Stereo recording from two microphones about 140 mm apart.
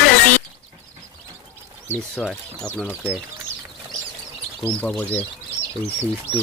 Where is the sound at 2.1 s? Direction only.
5° left (ahead or behind).